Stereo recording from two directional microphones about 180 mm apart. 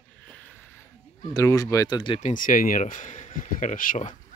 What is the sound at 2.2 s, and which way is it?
Speech, 50° left (ahead or behind).